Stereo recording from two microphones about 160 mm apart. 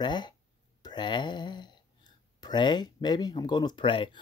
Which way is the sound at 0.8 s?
30° left (ahead or behind).